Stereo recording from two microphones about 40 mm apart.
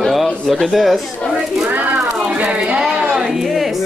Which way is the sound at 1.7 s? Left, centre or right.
Right.